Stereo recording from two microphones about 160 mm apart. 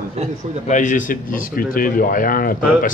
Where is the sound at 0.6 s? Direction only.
50° left (ahead or behind).